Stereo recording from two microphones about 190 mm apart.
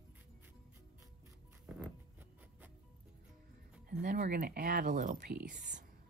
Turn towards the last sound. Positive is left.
turn(degrees=-40)  # may be behind; listen again after turning